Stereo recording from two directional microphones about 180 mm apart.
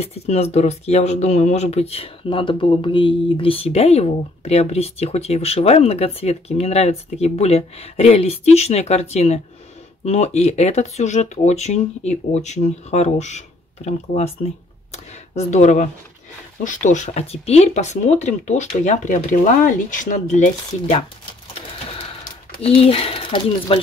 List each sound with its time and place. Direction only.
0.0 s speech: 35° left (ahead or behind)
21.9 s sewing machine: 45° left (ahead or behind)
22.6 s speech: 30° left (ahead or behind)